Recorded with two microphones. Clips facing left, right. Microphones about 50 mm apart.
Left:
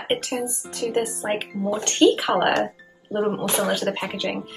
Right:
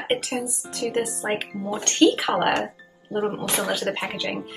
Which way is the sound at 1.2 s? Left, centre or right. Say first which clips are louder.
Left 2 dB; centre.